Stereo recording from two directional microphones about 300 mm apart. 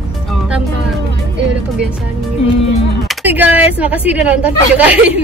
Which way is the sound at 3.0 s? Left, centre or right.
Centre.